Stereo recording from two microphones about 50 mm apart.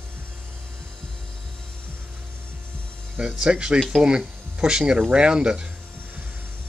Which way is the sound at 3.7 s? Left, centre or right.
Centre.